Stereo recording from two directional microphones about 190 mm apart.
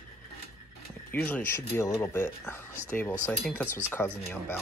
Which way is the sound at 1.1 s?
10° left (ahead or behind).